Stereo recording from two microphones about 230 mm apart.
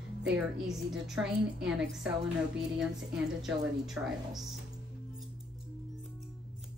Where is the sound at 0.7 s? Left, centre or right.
Centre.